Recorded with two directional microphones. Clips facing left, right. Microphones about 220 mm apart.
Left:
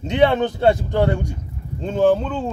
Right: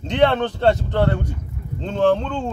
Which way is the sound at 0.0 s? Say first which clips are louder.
Left 1 dB; 10° left (ahead or behind).